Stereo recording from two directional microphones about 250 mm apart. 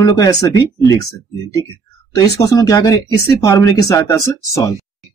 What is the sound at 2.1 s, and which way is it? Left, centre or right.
Speech, centre.